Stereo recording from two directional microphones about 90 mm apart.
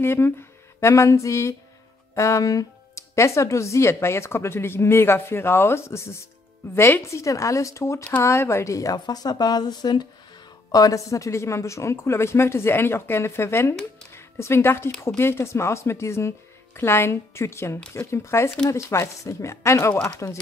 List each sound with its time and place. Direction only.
0.0 s a woman's voice: 25° left (ahead or behind)